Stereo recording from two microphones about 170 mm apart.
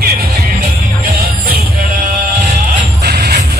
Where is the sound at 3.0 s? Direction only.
70° right (ahead or behind).